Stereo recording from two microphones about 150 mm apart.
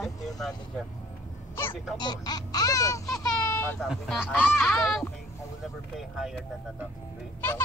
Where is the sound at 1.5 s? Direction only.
15° left (ahead or behind).